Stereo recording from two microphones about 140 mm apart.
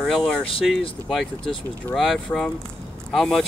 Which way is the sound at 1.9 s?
Centre (ahead or behind).